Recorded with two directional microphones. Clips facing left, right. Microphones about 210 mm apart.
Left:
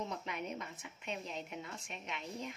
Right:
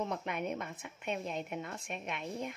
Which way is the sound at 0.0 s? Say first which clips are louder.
Right 5 dB; 55° right (ahead or behind).